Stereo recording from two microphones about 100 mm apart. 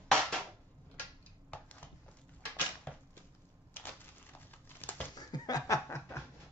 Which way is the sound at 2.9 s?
10° left (ahead or behind).